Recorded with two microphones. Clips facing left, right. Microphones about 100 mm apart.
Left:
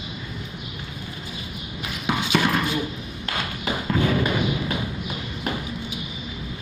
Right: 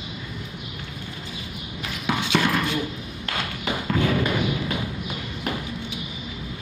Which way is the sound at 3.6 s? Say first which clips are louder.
Left 1 dB; 15° left (ahead or behind).